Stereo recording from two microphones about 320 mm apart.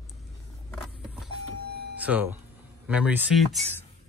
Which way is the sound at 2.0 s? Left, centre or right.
Centre.